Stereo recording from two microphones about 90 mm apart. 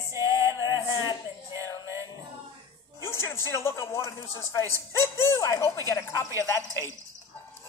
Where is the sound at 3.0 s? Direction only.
30° left (ahead or behind).